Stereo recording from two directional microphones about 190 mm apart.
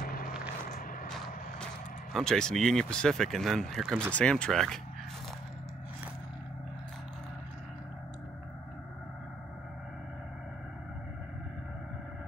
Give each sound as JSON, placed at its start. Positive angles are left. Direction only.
{"t": 0.0, "sound": "vehicle", "side_deg": 50}
{"t": 1.1, "sound": "vehicle", "side_deg": 0}
{"t": 2.1, "sound": "speech", "side_deg": 5}